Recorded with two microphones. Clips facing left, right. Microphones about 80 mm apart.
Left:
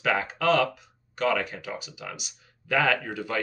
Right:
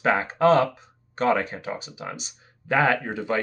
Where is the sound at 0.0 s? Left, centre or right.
Right.